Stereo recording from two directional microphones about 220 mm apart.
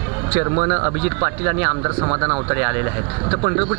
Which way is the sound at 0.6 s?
20° right (ahead or behind).